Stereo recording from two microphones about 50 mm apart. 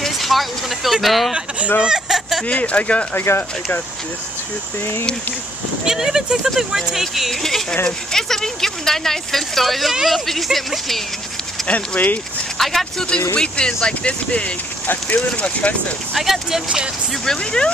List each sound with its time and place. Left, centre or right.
0.0 s speech: centre
1.8 s a sound: centre
2.4 s speech: left
3.2 s speech: left
5.9 s a woman's voice: centre
11.6 s speech: left
12.5 s speech: centre
13.4 s speech: centre
14.9 s speech: left
15.6 s speech: left
16.2 s speech: centre
16.6 s speech: centre
17.2 s speech: centre